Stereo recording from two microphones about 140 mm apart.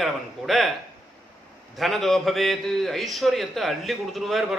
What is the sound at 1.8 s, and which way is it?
A man's voice, centre (ahead or behind).